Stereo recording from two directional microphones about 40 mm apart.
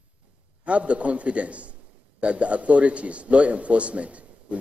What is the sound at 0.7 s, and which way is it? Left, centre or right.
Speech, right.